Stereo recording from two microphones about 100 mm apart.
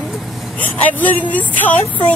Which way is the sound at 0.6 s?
15° left (ahead or behind).